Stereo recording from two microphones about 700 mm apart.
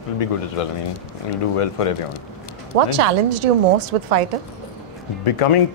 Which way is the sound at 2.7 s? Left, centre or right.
Right.